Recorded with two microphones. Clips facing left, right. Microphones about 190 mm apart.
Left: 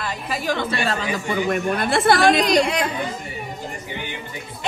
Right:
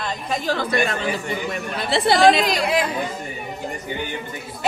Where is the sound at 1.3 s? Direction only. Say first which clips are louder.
Left 5 dB; 50° left (ahead or behind).